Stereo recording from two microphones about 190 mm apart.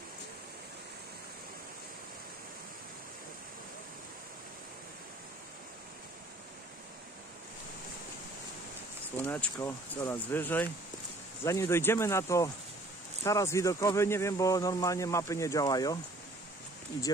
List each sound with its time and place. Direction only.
9.1 s speech: 10° left (ahead or behind)